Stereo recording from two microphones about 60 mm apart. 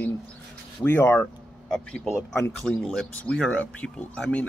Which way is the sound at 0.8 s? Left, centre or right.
Left.